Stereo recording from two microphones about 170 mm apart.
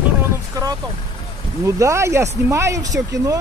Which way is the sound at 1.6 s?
15° right (ahead or behind).